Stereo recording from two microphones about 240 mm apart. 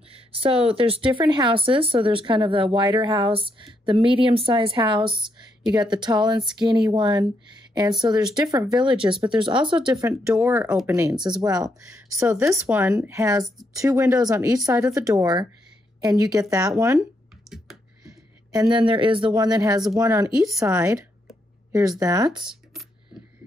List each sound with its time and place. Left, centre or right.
0.1 s speech: right
18.5 s speech: centre